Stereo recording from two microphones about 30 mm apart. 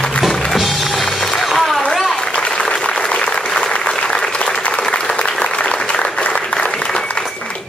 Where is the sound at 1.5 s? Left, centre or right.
Centre.